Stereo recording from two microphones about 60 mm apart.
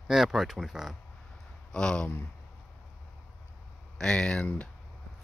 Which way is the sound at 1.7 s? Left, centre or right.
Centre.